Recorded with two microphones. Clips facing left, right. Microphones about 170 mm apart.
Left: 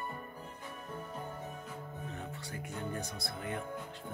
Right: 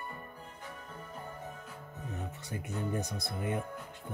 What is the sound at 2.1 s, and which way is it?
Speech, 20° right (ahead or behind).